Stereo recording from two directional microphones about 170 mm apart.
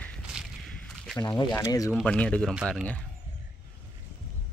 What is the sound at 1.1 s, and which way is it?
Speech, 25° left (ahead or behind).